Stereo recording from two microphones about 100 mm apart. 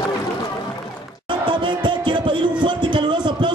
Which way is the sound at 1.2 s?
55° right (ahead or behind).